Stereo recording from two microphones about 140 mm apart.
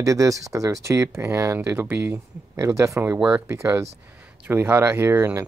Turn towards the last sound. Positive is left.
turn(degrees=-15)  # may be behind; listen again after turning